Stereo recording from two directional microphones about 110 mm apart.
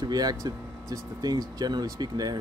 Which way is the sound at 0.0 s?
35° right (ahead or behind).